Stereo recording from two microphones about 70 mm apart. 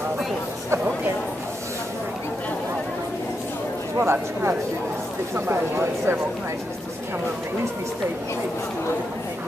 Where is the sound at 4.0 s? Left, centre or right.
Right.